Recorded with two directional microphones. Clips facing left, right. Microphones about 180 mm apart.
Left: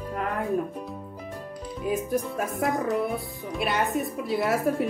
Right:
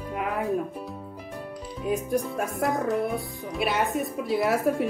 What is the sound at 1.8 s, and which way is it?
Speech, centre (ahead or behind).